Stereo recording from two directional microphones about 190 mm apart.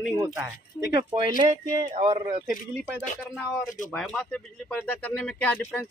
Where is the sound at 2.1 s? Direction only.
25° right (ahead or behind).